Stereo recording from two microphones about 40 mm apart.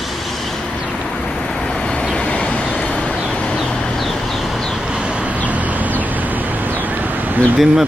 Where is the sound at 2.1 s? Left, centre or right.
Left.